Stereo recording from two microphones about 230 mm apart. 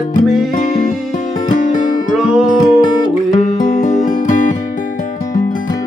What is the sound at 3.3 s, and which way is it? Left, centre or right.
Music, left.